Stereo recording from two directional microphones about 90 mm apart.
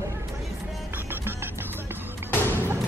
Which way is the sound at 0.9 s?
25° right (ahead or behind).